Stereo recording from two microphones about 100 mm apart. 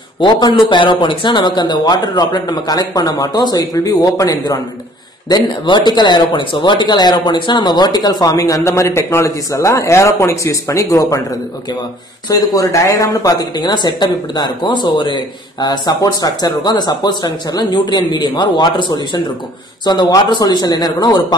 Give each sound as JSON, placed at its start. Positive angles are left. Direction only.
{"t": 0.2, "sound": "speech", "side_deg": 50}
{"t": 5.3, "sound": "speech", "side_deg": 50}
{"t": 12.4, "sound": "speech", "side_deg": 35}